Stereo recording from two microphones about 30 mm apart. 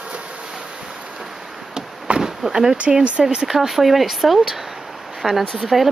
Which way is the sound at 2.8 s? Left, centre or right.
Right.